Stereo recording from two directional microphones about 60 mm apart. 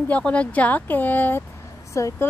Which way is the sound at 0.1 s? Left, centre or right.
Left.